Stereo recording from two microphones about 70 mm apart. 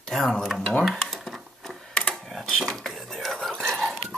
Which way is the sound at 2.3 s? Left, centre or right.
Centre.